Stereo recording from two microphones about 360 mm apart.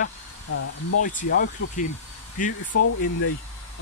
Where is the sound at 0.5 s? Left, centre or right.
Left.